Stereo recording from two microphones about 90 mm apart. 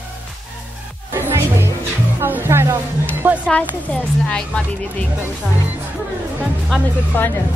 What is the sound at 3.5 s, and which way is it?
A woman's voice, 15° left (ahead or behind).